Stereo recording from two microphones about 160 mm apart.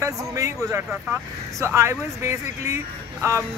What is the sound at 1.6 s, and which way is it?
Speech, 15° right (ahead or behind).